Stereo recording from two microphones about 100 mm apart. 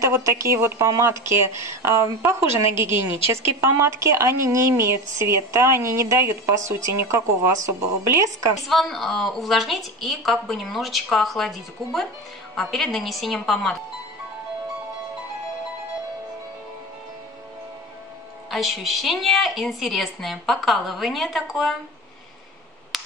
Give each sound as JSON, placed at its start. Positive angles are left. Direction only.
{"t": 0.0, "sound": "a woman's voice", "side_deg": -30}
{"t": 8.5, "sound": "a woman's voice", "side_deg": 0}
{"t": 18.5, "sound": "a woman's voice", "side_deg": 0}